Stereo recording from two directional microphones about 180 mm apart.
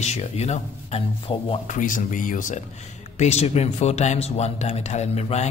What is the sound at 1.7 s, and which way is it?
A man's voice, 45° left (ahead or behind).